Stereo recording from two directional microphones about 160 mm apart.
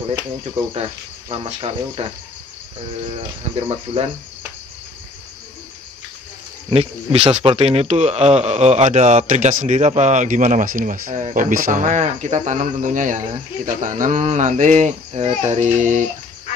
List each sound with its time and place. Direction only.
1.3 s speech: 35° right (ahead or behind)
3.5 s speech: 35° right (ahead or behind)
6.7 s a man's voice: 40° right (ahead or behind)